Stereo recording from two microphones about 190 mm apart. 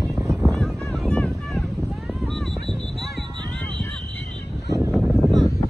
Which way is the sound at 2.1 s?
Centre (ahead or behind).